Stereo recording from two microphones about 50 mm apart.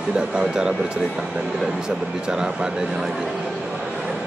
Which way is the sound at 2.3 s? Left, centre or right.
Centre.